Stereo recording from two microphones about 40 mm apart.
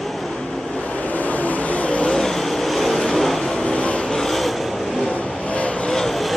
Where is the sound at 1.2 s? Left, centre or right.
Left.